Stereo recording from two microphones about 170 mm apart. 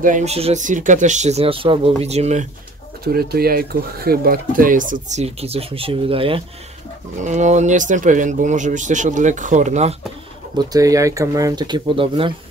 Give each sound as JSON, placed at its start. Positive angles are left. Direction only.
{"t": 0.0, "sound": "speech", "side_deg": -45}
{"t": 3.0, "sound": "speech", "side_deg": -65}
{"t": 7.2, "sound": "speech", "side_deg": -45}
{"t": 10.6, "sound": "speech", "side_deg": -20}